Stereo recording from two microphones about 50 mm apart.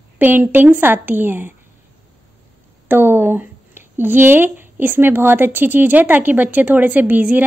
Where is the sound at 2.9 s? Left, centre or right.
Right.